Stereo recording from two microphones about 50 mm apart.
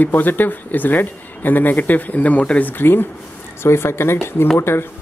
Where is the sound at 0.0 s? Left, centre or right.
Left.